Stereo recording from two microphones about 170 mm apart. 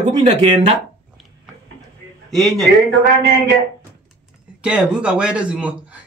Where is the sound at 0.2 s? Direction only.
40° right (ahead or behind).